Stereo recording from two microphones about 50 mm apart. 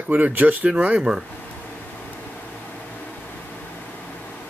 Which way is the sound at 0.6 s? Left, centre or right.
Right.